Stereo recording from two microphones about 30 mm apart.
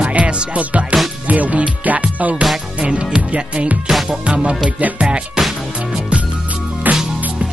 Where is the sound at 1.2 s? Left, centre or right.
Right.